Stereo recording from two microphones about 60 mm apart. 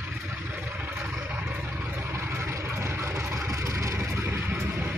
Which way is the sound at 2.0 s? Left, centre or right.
Right.